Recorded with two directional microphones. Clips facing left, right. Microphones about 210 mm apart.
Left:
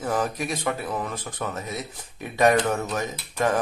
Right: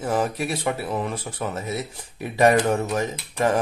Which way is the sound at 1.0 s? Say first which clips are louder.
Right 3 dB; 30° right (ahead or behind).